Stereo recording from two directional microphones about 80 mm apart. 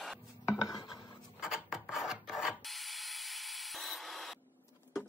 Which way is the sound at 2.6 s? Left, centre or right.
Centre.